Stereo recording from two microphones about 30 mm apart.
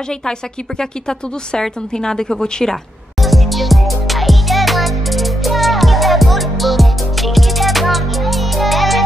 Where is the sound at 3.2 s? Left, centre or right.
Centre.